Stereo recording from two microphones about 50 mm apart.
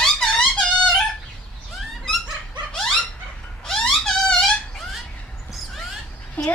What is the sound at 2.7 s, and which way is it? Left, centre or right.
Dog, centre.